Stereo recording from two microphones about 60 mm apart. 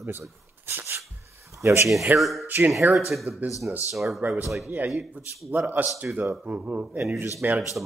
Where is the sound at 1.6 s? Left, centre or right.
Right.